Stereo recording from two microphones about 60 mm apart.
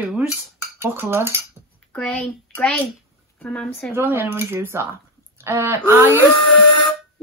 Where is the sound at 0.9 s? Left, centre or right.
Right.